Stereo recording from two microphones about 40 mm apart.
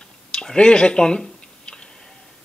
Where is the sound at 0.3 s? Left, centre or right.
Left.